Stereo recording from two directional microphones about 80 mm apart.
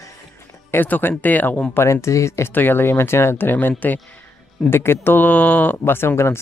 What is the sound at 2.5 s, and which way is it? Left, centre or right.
Speech, left.